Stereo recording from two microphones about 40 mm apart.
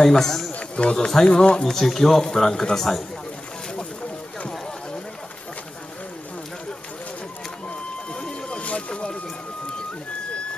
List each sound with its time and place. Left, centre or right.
0.0 s speech: centre
0.5 s run: left
0.9 s speech: centre
8.1 s a sound: left